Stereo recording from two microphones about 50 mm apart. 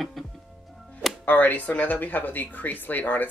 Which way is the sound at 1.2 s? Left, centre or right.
Left.